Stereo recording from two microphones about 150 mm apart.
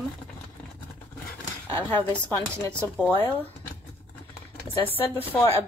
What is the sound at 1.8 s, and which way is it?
Speech, 10° left (ahead or behind).